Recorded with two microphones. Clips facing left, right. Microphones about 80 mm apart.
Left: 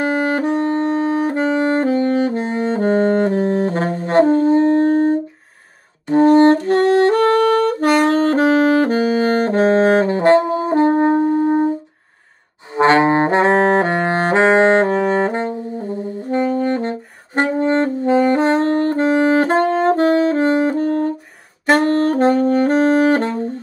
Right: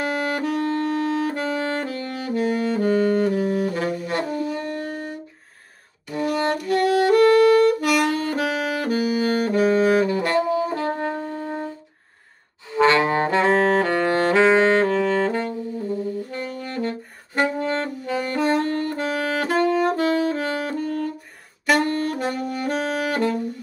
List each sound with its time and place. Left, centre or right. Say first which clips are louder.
0.0 s saxophone: left 6 dB; left
12.7 s saxophone: left 5 dB; left